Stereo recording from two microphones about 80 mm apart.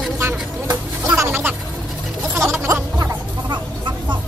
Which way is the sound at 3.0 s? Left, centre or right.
Right.